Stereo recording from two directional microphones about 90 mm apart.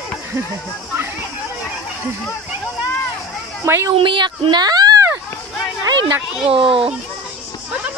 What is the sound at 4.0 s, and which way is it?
Speech, 65° right (ahead or behind).